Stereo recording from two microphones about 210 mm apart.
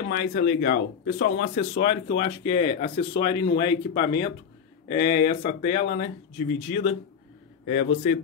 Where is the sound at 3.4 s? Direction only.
40° left (ahead or behind).